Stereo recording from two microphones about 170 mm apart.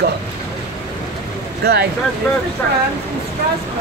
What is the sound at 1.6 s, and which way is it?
Speech, 70° right (ahead or behind).